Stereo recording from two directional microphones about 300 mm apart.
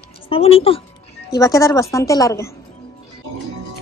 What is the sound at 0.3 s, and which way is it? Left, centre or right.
A woman's voice, centre.